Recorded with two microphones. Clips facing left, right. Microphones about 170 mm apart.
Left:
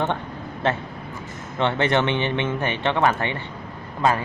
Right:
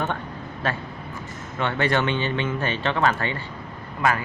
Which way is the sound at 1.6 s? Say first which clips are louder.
Left 2 dB; 20° left (ahead or behind).